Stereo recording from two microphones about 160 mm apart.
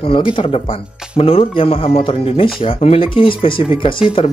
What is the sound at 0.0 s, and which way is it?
Speech, 35° left (ahead or behind).